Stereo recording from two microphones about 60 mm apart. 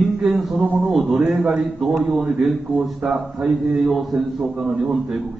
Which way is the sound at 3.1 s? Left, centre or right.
Centre.